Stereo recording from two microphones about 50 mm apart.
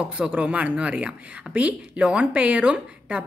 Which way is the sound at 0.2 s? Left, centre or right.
Right.